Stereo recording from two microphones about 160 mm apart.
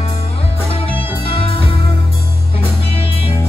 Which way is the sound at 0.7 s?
35° left (ahead or behind).